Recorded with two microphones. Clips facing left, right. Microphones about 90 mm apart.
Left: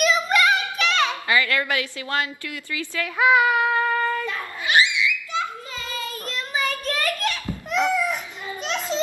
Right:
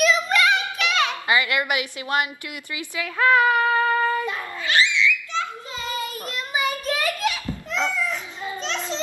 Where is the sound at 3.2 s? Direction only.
10° left (ahead or behind); by 4.4 s 15° right (ahead or behind).